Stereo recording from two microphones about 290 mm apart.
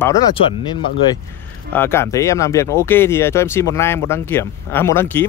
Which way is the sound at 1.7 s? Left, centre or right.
Centre.